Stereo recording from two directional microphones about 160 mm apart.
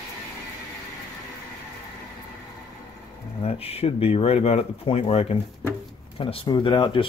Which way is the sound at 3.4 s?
35° left (ahead or behind).